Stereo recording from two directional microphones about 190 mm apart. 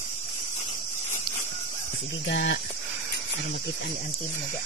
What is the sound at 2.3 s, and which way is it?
Speech, 60° left (ahead or behind).